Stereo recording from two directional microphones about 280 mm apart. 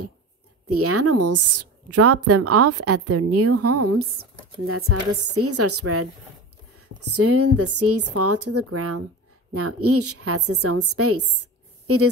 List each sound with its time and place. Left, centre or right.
0.7 s a woman's voice: right